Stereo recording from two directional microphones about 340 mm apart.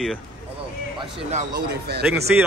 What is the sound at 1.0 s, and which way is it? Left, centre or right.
Speech, centre.